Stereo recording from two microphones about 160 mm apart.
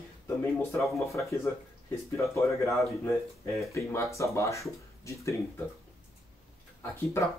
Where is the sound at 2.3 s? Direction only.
20° left (ahead or behind).